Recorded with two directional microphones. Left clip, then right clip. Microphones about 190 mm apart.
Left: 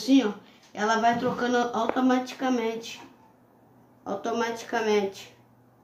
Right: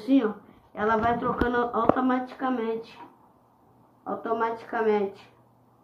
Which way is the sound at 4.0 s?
55° left (ahead or behind).